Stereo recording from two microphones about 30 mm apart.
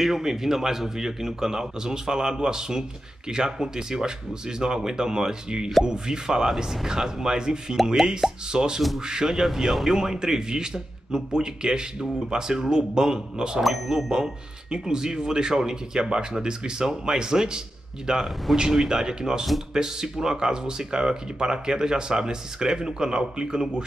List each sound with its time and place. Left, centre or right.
0.0 s speech: centre
6.4 s speech: centre